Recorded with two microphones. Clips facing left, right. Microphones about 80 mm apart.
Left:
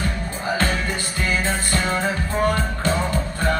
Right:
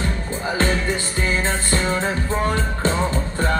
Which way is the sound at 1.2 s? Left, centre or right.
Right.